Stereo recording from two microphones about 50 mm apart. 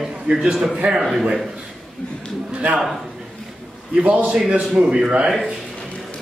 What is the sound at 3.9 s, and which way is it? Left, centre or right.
A man's voice, right.